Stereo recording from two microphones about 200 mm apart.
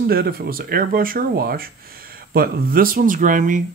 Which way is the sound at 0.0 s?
50° right (ahead or behind).